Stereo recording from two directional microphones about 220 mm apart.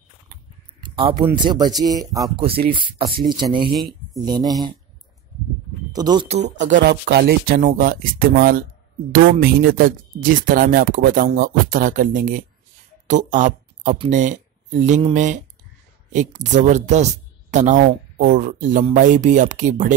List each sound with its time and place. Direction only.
0.7 s speech: 20° right (ahead or behind)
3.7 s a sound: centre (ahead or behind)
4.2 s speech: 15° right (ahead or behind)
5.9 s speech: 20° right (ahead or behind)
6.8 s speech: 50° right (ahead or behind)